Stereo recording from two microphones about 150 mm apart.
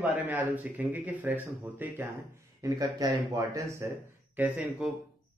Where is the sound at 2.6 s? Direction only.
25° right (ahead or behind).